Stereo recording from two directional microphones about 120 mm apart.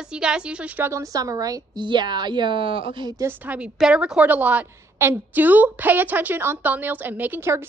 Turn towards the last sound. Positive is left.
turn(degrees=-20)  # may be behind; listen again after turning